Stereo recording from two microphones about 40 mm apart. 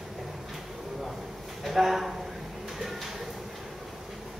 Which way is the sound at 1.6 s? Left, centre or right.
Centre.